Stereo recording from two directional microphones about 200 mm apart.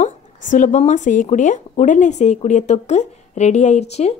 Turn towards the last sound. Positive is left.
turn(degrees=35)  # may be behind; listen again after turning